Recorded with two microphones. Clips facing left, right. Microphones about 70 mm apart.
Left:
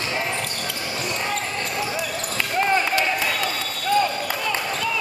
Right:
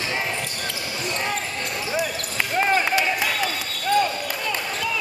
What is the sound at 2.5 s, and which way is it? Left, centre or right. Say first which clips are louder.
Basketball bounce: even; centre.